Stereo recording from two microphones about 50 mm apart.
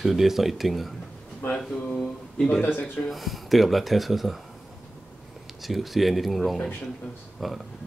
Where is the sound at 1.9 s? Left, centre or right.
Centre.